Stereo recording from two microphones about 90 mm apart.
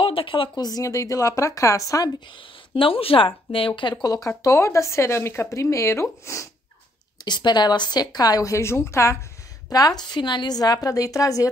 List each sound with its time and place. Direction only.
0.0 s speech: 80° left
0.6 s speech: 45° left (ahead or behind)
2.1 s speech: 75° left (ahead or behind)
3.9 s a woman's voice: 45° left (ahead or behind)
4.4 s speech: 35° left (ahead or behind)
7.2 s a woman's voice: 55° left (ahead or behind); by 9.2 s 30° left (ahead or behind)
9.7 s a woman's voice: 45° left (ahead or behind)